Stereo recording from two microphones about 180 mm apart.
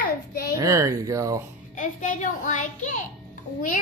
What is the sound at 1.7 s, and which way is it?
A woman's voice, 45° left (ahead or behind).